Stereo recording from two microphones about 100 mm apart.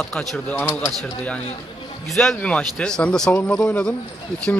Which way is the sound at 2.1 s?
5° left (ahead or behind).